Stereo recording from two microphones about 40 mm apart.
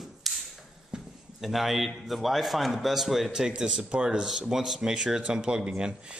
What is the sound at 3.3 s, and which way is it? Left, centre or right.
Speech, centre.